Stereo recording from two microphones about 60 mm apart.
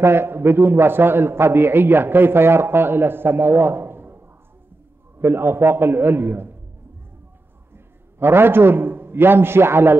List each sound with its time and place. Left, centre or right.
0.0 s a man's voice: right
5.2 s a man's voice: right
7.7 s a man's voice: right